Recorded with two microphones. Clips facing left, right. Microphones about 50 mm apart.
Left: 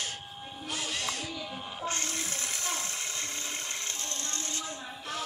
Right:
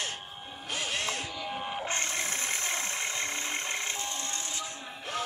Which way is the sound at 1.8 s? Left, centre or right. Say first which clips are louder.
Right 2 dB; right.